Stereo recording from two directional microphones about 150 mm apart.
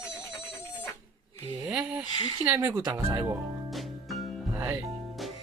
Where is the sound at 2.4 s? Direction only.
15° right (ahead or behind).